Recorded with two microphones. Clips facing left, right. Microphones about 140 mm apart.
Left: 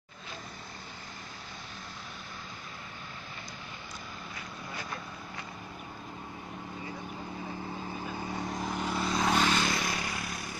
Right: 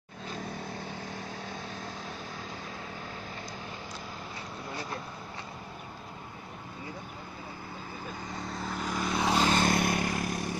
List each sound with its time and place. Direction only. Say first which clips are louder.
8.5 s vehicle: even; 15° left (ahead or behind)
9.1 s vehicle: right 1 dB; 10° right (ahead or behind)
9.5 s vehicle: right 4 dB; 50° right (ahead or behind)